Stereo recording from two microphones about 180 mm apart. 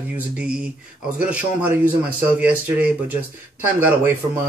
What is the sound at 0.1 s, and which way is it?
Speech, 5° right (ahead or behind).